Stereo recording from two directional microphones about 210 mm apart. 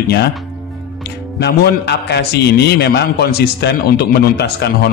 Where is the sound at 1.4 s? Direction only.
50° left (ahead or behind).